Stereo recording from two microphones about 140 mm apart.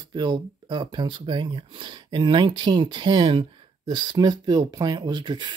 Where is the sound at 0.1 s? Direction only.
30° right (ahead or behind).